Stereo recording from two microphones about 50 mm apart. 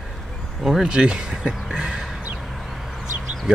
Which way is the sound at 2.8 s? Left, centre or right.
Centre.